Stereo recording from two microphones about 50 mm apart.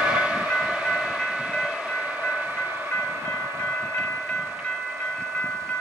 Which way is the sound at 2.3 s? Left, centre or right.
Right.